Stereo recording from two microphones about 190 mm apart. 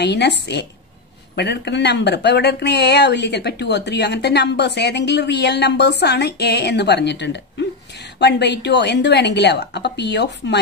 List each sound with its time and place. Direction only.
0.0 s speech: 65° left (ahead or behind)